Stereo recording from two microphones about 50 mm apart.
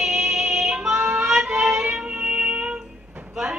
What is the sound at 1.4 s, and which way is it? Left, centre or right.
Child singing, right.